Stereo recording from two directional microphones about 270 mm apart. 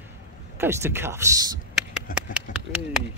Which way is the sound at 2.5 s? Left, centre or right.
Left.